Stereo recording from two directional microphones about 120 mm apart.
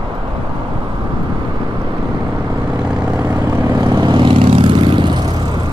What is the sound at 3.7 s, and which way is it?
Vehicle, 30° right (ahead or behind).